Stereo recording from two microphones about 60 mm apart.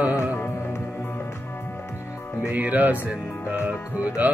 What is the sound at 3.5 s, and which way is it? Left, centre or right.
Music, right.